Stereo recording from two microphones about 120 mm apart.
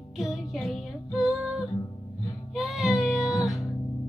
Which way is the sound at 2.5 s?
Centre (ahead or behind).